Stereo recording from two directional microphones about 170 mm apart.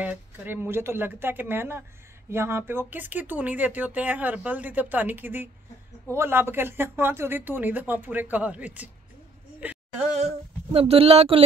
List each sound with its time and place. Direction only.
0.0 s speech: 10° right (ahead or behind)
10.7 s speech: 35° right (ahead or behind)